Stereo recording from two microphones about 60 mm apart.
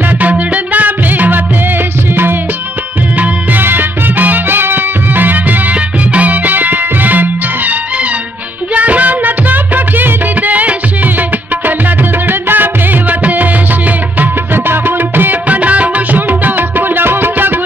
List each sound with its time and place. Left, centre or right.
0.2 s music: right
3.2 s music: right